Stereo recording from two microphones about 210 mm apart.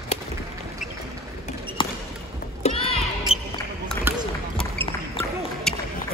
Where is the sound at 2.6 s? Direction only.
30° left (ahead or behind).